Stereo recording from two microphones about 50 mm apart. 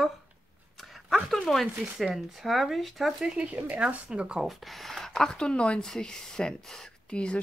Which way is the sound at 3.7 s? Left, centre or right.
Centre.